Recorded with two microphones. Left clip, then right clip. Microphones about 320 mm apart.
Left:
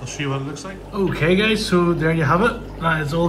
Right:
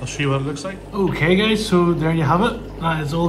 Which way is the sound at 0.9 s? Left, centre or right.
Centre.